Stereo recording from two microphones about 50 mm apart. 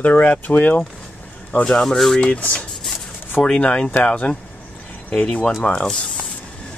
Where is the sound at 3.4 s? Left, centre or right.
Centre.